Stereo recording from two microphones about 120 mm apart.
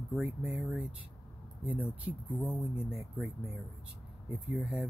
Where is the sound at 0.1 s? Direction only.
10° right (ahead or behind).